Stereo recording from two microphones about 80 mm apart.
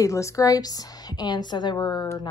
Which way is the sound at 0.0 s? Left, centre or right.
Left.